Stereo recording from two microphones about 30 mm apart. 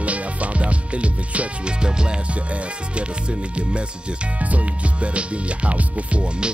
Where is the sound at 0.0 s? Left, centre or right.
Right.